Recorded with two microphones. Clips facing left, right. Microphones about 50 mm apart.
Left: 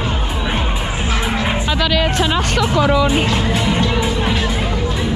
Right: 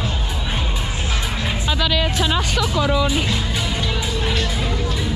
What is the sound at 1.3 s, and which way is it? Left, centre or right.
Music, left.